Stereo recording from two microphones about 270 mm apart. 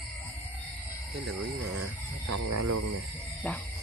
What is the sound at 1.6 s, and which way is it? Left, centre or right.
Speech, right.